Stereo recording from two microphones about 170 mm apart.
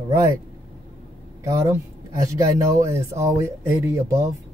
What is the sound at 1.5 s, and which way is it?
Speech, 15° right (ahead or behind).